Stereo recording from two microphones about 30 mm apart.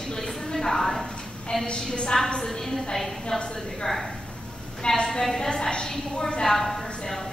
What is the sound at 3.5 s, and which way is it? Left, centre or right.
A woman's voice, centre.